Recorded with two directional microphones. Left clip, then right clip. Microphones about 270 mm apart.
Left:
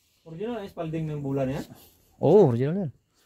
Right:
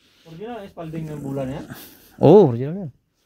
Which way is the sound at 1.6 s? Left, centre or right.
Right.